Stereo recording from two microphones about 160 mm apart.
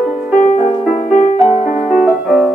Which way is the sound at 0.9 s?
45° left (ahead or behind).